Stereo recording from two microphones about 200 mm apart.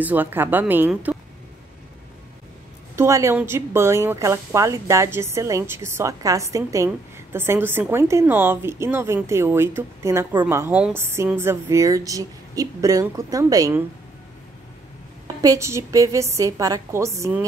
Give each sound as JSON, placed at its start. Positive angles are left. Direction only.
{"t": 0.0, "sound": "a woman's voice", "side_deg": -10}
{"t": 3.0, "sound": "a woman's voice", "side_deg": -15}
{"t": 15.4, "sound": "a woman's voice", "side_deg": -15}